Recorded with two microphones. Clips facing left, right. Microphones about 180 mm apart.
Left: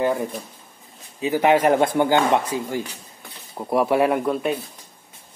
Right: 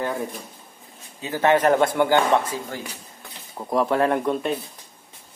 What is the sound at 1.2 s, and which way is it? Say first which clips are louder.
Speech: left 2 dB; 15° left (ahead or behind).